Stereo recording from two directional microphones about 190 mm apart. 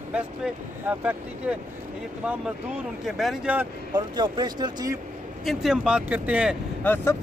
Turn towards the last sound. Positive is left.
turn(degrees=10)  # may be behind; listen again after turning